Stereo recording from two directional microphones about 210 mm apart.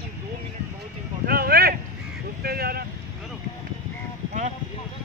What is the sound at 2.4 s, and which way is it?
Vehicle, 45° right (ahead or behind).